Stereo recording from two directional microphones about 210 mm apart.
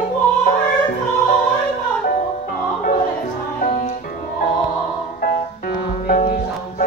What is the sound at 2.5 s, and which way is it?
Music, 40° left (ahead or behind).